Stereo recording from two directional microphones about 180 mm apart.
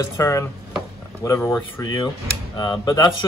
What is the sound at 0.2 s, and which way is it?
Speech, 20° left (ahead or behind).